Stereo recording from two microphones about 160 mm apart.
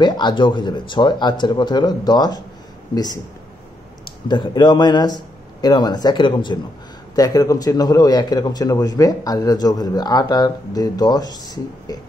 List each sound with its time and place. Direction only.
0.0 s a man's voice: 30° left (ahead or behind)
4.3 s a man's voice: 30° left (ahead or behind)